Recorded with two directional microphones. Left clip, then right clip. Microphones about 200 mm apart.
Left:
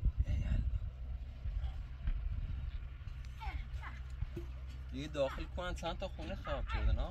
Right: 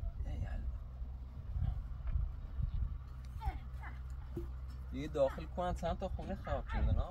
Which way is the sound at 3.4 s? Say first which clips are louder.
Even; 30° right (ahead or behind).